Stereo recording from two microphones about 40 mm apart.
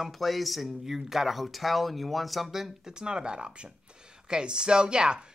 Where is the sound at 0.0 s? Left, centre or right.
Centre.